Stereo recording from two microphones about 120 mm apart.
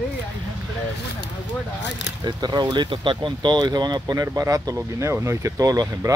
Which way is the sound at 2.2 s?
35° right (ahead or behind).